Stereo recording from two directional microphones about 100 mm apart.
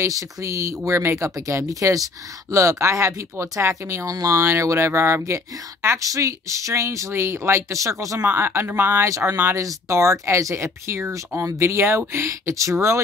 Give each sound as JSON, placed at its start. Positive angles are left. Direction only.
{"t": 0.0, "sound": "speech", "side_deg": -30}